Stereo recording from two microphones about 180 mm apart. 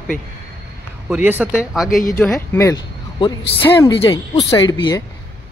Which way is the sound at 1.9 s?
50° left (ahead or behind).